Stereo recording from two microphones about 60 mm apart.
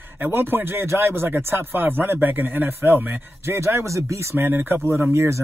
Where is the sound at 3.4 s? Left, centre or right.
Right.